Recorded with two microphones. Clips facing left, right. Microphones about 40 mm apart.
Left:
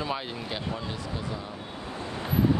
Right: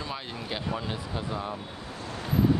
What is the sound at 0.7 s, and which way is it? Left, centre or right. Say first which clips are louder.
Speech: right 1 dB; centre.